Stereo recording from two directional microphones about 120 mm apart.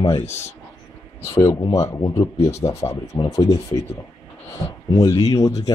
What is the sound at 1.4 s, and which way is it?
Speech, 30° left (ahead or behind).